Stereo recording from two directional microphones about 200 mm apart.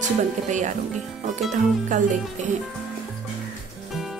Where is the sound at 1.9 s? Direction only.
35° right (ahead or behind).